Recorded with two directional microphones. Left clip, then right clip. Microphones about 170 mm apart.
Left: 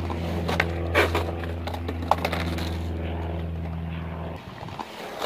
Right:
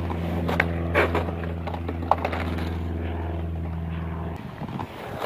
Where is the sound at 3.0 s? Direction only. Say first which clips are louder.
Even; 35° right (ahead or behind).